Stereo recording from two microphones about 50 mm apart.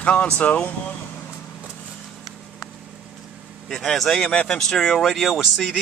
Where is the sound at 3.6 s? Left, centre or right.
Centre.